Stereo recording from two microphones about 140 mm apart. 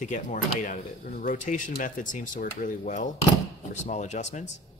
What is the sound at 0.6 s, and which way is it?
Speech, 75° left (ahead or behind).